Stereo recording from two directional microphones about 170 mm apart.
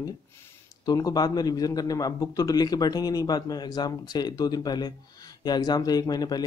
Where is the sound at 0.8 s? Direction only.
20° left (ahead or behind).